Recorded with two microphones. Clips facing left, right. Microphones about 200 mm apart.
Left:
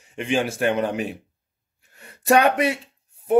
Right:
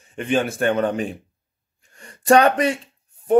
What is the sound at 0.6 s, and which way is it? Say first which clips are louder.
Speech: right 2 dB; 5° left (ahead or behind).